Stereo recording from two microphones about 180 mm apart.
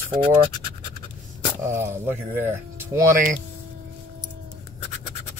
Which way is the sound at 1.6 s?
15° right (ahead or behind).